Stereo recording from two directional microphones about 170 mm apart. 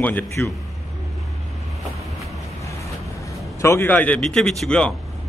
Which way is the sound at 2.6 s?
20° left (ahead or behind).